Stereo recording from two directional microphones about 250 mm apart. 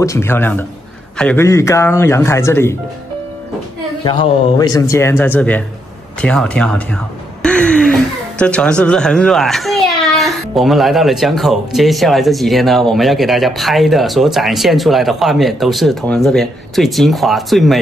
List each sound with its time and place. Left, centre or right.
0.0 s speech: centre
4.0 s speech: centre